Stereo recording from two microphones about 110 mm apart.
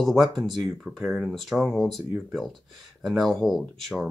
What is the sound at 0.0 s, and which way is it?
Speech, centre (ahead or behind).